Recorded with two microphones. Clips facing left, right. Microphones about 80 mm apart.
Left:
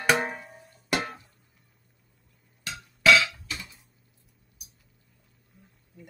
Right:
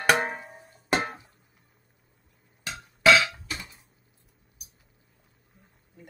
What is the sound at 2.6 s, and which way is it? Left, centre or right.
Music, right.